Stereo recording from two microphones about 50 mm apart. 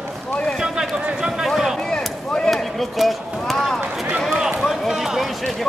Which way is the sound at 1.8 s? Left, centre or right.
Centre.